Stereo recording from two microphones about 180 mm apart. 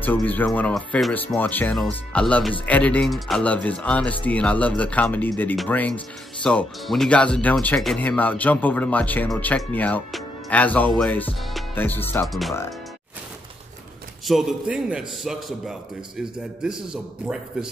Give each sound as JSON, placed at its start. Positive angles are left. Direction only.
{"t": 0.0, "sound": "speech", "side_deg": 10}
{"t": 12.3, "sound": "a man's voice", "side_deg": 0}
{"t": 14.2, "sound": "a man's voice", "side_deg": -5}